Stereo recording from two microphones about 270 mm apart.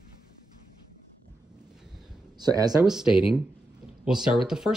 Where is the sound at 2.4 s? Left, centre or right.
Centre.